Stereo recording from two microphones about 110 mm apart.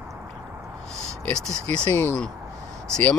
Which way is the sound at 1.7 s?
20° left (ahead or behind).